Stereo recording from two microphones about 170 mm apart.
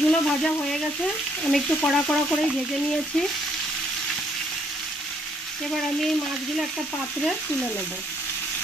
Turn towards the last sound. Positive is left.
turn(degrees=0)  # may be behind; listen again after turning